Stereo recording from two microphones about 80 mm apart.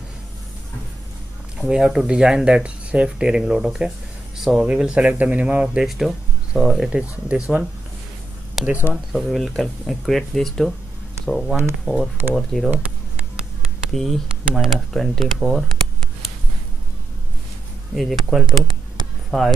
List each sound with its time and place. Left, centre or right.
1.6 s speech: centre
5.9 s speech: centre
6.9 s speech: centre
8.6 s a sound: centre
8.9 s speech: centre
17.9 s speech: centre